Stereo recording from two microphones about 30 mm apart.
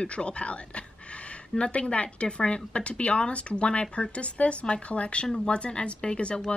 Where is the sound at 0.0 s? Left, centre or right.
Left.